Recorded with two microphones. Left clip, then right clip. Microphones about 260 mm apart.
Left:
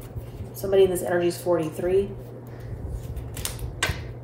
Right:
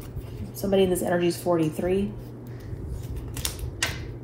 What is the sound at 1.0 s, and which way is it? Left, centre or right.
Speech, right.